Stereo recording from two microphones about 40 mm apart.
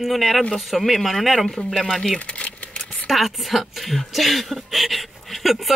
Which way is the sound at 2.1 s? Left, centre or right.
Left.